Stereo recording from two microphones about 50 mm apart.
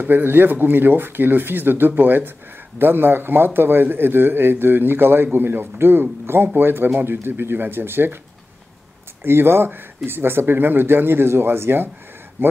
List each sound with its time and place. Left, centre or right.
0.0 s a man's voice: right
9.2 s a man's voice: right